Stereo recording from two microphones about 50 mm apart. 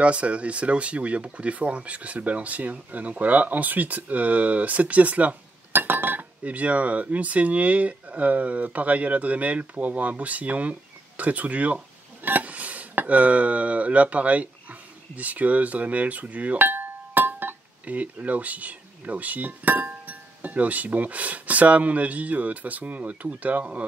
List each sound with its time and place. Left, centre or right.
0.0 s speech: right
5.7 s chink: right
6.4 s speech: right